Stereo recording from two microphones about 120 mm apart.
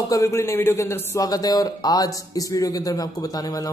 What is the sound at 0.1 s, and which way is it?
A man's voice, 25° left (ahead or behind).